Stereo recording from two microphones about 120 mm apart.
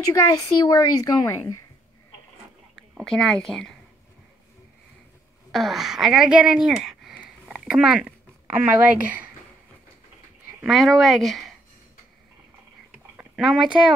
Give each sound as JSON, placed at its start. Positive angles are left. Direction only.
{"t": 0.1, "sound": "speech", "side_deg": 30}
{"t": 2.9, "sound": "speech", "side_deg": 5}
{"t": 5.5, "sound": "speech", "side_deg": 0}
{"t": 7.4, "sound": "a sound", "side_deg": -5}
{"t": 8.5, "sound": "a woman's voice", "side_deg": -15}
{"t": 10.6, "sound": "speech", "side_deg": 0}
{"t": 13.4, "sound": "speech", "side_deg": -5}